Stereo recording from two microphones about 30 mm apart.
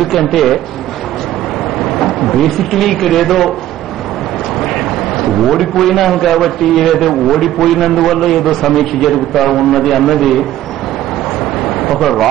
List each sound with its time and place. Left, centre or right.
0.0 s speech: centre
1.8 s speech: centre
4.6 s a man's voice: centre
11.6 s a sound: centre